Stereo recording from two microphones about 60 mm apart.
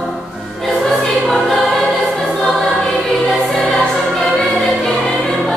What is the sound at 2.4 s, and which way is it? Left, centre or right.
Music, centre.